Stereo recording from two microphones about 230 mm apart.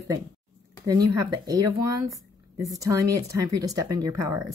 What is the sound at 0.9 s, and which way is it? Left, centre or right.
Speech, centre.